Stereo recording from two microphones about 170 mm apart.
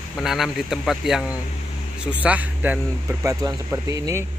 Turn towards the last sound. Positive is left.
turn(degrees=-15)  # may be behind; listen again after turning